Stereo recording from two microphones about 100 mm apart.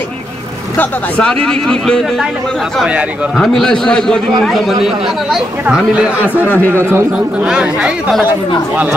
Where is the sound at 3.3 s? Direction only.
Centre (ahead or behind).